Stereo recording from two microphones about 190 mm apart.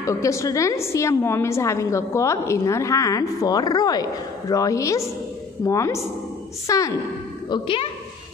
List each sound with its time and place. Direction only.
0.0 s a woman's voice: 15° left (ahead or behind)